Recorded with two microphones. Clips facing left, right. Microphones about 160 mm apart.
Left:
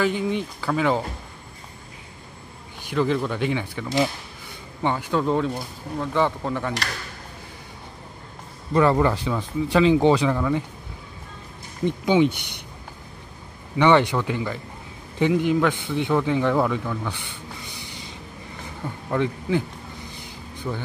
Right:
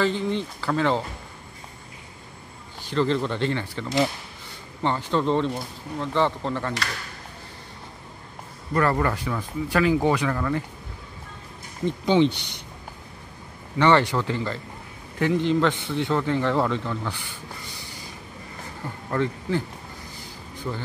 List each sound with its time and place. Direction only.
0.0 s speech: 10° left (ahead or behind)
2.8 s speech: 10° left (ahead or behind)
8.7 s speech: 20° left (ahead or behind)
10.3 s speech: 10° left (ahead or behind)
11.8 s speech: 10° left (ahead or behind)
13.7 s speech: 15° left (ahead or behind)
17.6 s a sound: 20° left (ahead or behind)
19.0 s speech: 15° left (ahead or behind)
20.2 s a sound: 15° left (ahead or behind)